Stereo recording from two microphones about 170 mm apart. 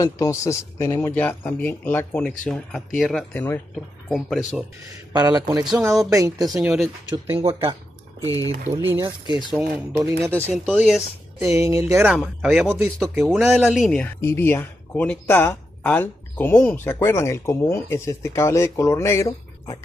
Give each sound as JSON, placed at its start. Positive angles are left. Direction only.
{"t": 0.0, "sound": "speech", "side_deg": 20}
{"t": 3.7, "sound": "speech", "side_deg": 0}
{"t": 5.1, "sound": "speech", "side_deg": -20}
{"t": 6.4, "sound": "speech", "side_deg": -5}
{"t": 8.2, "sound": "speech", "side_deg": 20}
{"t": 8.7, "sound": "speech", "side_deg": -15}
{"t": 12.0, "sound": "speech", "side_deg": -5}